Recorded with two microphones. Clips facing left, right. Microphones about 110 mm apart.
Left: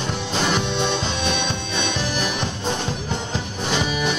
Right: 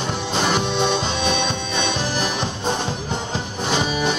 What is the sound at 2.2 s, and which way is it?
Music, 35° right (ahead or behind).